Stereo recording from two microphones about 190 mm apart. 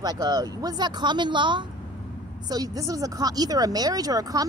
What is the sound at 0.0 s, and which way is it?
A woman's voice, 20° right (ahead or behind).